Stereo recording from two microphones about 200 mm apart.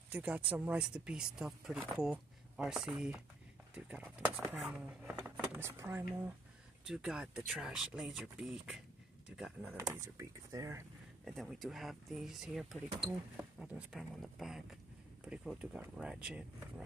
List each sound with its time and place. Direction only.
0.1 s speech: 5° right (ahead or behind)
9.9 s speech: 15° right (ahead or behind)
11.2 s speech: centre (ahead or behind)